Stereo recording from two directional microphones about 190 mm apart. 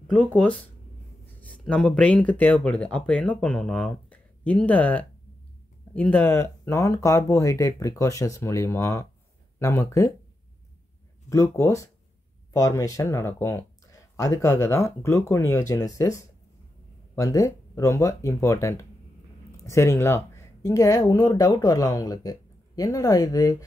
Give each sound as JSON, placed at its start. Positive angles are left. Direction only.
{"t": 0.1, "sound": "speech", "side_deg": 5}
{"t": 11.2, "sound": "speech", "side_deg": 15}